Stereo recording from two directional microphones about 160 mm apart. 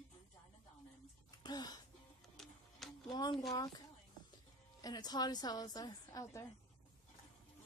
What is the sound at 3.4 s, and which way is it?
Speech, 25° left (ahead or behind).